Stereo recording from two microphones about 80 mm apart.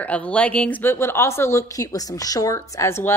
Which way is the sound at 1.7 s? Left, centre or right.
Left.